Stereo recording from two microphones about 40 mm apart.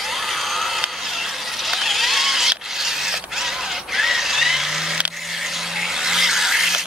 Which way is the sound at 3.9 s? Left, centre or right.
Centre.